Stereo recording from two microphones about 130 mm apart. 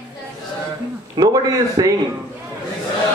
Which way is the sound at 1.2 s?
30° right (ahead or behind).